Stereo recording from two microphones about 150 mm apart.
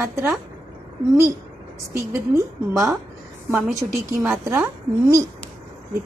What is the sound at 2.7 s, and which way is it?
Speech, 5° right (ahead or behind).